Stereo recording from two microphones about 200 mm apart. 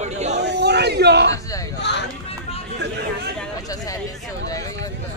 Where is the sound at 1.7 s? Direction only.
60° left (ahead or behind).